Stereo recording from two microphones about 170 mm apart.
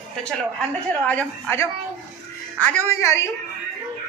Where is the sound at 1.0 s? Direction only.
10° left (ahead or behind).